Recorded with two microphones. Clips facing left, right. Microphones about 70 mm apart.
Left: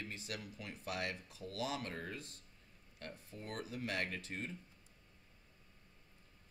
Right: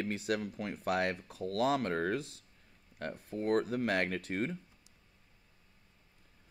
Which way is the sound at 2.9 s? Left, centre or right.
Right.